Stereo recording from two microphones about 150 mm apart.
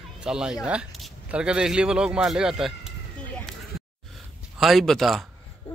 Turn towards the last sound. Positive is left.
turn(degrees=0)  # may be behind; listen again after turning